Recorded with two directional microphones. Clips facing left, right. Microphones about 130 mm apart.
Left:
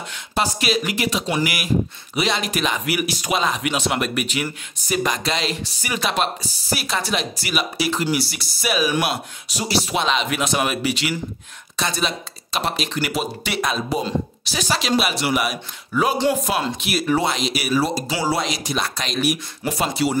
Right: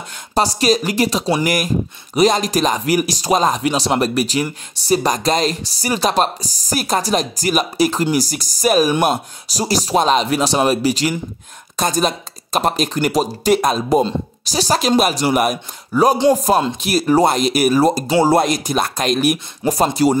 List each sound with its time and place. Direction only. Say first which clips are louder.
0.3 s speech: right 6 dB; 40° right (ahead or behind)